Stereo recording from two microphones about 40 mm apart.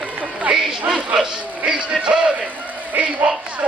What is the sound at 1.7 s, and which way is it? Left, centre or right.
Music, right.